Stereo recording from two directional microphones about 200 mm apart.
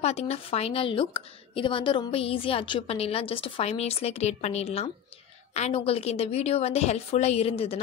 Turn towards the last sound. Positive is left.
turn(degrees=30)  # may be behind; listen again after turning